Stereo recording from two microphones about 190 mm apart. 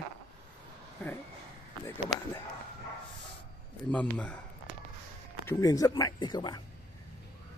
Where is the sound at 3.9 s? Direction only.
5° left (ahead or behind).